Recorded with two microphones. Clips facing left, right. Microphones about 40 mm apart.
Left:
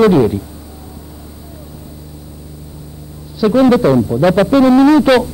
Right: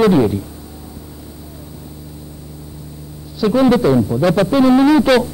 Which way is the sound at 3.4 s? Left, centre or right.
Centre.